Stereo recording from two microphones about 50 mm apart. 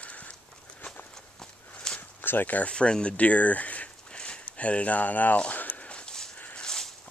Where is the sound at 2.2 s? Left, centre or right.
Left.